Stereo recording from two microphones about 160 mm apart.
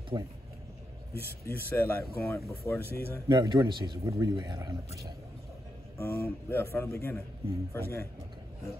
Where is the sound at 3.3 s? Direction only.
25° right (ahead or behind).